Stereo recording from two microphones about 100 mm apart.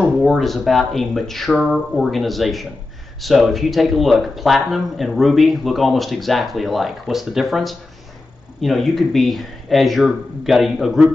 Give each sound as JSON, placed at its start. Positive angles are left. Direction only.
{"t": 0.0, "sound": "speech", "side_deg": 0}